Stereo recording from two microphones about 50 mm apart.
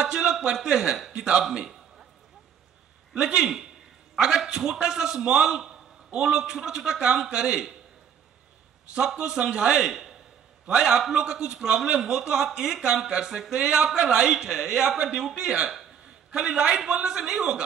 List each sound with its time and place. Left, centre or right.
0.0 s a man's voice: centre
1.4 s a sound: centre
3.2 s a man's voice: centre
8.9 s a man's voice: centre
15.7 s a sound: centre
16.3 s a man's voice: centre